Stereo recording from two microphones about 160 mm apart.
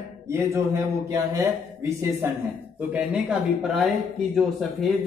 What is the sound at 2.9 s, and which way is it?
Speech, 5° right (ahead or behind).